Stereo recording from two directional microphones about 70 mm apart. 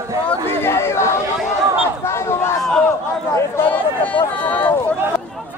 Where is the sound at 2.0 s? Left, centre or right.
Left.